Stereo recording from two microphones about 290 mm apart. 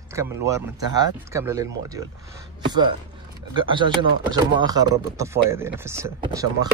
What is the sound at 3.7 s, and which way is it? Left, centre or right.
Speech, centre.